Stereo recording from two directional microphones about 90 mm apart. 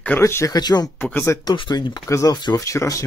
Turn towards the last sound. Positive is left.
turn(degrees=35)  # may be behind; listen again after turning